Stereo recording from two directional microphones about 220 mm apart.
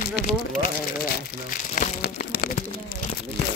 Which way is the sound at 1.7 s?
35° left (ahead or behind).